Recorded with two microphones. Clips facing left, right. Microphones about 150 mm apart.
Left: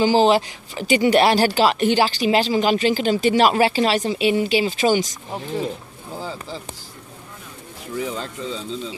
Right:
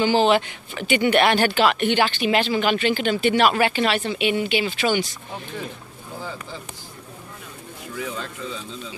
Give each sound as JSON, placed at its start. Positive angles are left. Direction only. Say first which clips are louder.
{"t": 0.0, "sound": "speech", "louder": "left 2 dB", "side_deg": 35}
{"t": 6.1, "sound": "a sound", "louder": "left 3 dB", "side_deg": 30}
{"t": 7.9, "sound": "speech", "louder": "left 4 dB", "side_deg": 30}